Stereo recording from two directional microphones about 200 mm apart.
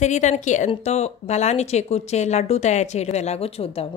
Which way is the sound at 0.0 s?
35° left (ahead or behind).